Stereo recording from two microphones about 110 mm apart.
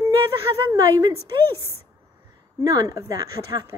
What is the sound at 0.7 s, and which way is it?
Speech, 30° right (ahead or behind).